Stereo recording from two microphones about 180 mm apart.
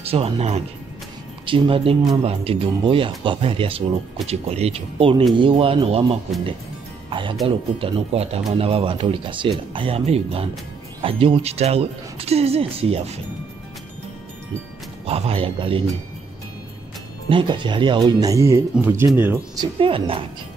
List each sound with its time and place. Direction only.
0.0 s speech: 35° right (ahead or behind)
15.0 s speech: 35° right (ahead or behind)
17.3 s speech: 25° right (ahead or behind)